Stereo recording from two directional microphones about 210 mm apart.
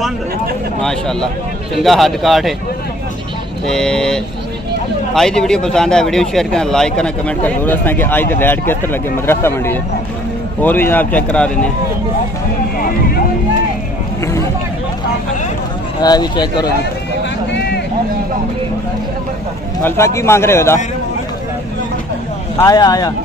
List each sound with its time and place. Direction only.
0.8 s speech: 5° left (ahead or behind)
3.6 s speech: 5° left (ahead or behind)
16.0 s speech: 20° left (ahead or behind)
19.8 s speech: 10° left (ahead or behind)
22.6 s speech: 15° left (ahead or behind)